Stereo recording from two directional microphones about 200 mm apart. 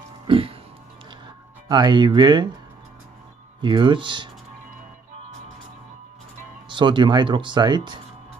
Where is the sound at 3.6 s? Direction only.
25° right (ahead or behind).